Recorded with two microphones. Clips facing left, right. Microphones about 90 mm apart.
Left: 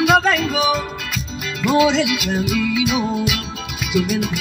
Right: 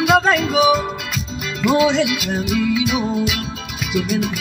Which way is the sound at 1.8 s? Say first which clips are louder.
Left 1 dB; 65° left (ahead or behind).